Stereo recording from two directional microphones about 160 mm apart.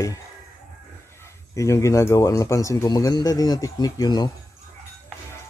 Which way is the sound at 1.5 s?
20° left (ahead or behind).